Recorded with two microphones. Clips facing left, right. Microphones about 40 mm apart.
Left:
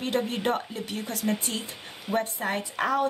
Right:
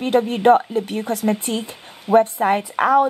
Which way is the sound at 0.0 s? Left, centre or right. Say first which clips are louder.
Right 11 dB; right.